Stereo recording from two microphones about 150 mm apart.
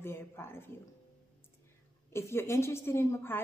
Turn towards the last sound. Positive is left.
turn(degrees=15)  # may be behind; listen again after turning